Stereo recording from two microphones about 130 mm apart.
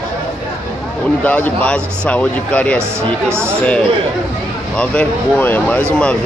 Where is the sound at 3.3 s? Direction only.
20° right (ahead or behind).